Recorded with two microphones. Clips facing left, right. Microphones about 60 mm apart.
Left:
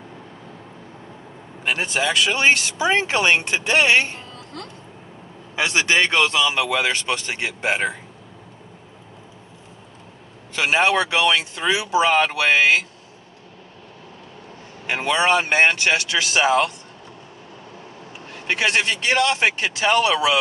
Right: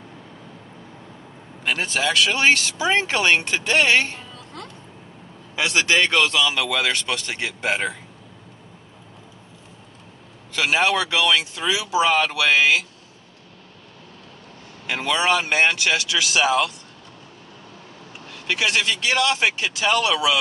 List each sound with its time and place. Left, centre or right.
1.6 s speech: left
5.6 s speech: left
10.5 s speech: left
14.9 s speech: left
18.3 s speech: left